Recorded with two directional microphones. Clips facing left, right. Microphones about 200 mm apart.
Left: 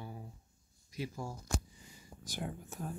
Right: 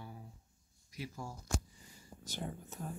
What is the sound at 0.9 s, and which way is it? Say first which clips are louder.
Speech: left 4 dB; 20° left (ahead or behind).